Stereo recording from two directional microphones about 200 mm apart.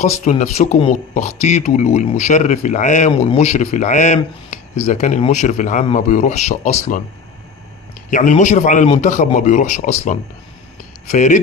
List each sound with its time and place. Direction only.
0.0 s speech: 35° left (ahead or behind)
8.1 s speech: 40° left (ahead or behind)